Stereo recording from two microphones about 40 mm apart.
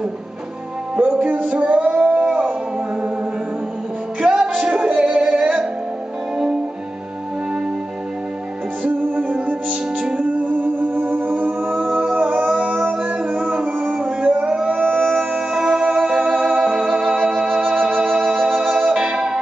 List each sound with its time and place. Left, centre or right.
1.1 s music: right
2.0 s howl: right
4.2 s music: right
8.8 s music: right
11.8 s music: right
13.7 s music: right
14.0 s a sound: right
15.0 s music: centre; by 18.0 s right
18.0 s music: centre